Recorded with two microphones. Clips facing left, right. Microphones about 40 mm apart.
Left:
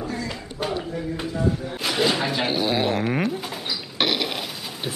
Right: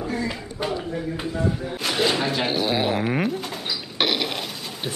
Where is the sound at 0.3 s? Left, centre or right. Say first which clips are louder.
Right 1 dB; centre.